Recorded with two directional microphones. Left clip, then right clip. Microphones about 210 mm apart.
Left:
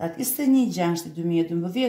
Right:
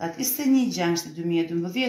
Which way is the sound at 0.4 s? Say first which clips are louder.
Left 2 dB; 45° left (ahead or behind).